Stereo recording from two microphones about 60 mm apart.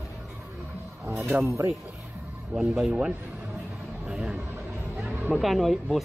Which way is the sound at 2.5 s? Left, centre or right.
Centre.